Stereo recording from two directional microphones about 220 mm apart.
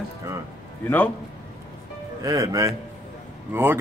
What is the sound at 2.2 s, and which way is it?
Speech, 15° right (ahead or behind).